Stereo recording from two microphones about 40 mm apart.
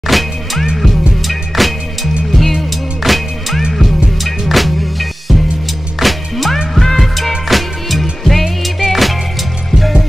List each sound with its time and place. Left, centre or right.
0.0 s music: centre
5.9 s music: centre